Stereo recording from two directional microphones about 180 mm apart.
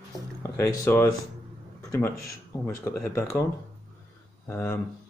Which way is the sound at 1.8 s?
15° left (ahead or behind).